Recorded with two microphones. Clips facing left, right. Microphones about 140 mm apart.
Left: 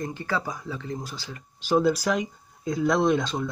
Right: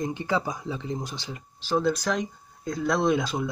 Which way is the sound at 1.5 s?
15° left (ahead or behind).